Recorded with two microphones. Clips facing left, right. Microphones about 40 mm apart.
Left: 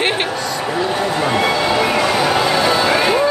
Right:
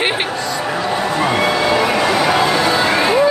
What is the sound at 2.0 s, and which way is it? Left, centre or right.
Music, centre.